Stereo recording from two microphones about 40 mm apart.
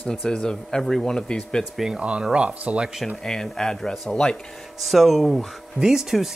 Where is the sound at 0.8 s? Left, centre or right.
Centre.